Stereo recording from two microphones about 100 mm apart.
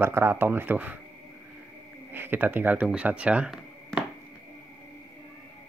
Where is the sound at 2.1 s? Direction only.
20° right (ahead or behind).